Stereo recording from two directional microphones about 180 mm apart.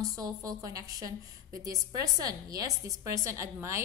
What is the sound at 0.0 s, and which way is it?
A woman's voice, 20° right (ahead or behind).